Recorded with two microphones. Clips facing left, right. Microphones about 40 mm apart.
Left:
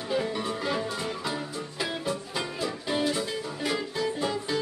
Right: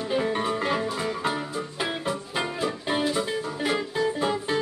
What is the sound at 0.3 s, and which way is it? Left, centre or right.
Music, right.